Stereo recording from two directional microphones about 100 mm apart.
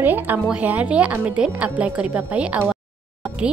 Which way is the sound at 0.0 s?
20° right (ahead or behind).